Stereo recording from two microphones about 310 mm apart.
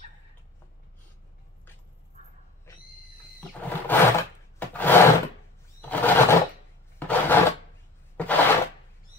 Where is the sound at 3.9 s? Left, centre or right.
Centre.